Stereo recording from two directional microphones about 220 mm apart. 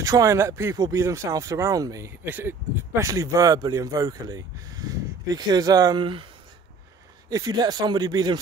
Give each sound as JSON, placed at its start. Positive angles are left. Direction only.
{"t": 0.0, "sound": "speech", "side_deg": -15}
{"t": 7.2, "sound": "speech", "side_deg": -15}